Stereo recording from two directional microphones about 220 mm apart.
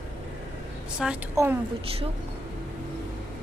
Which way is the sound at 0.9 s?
5° right (ahead or behind).